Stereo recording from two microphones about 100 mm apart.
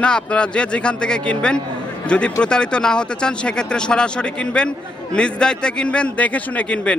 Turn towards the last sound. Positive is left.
turn(degrees=10)  # may be behind; listen again after turning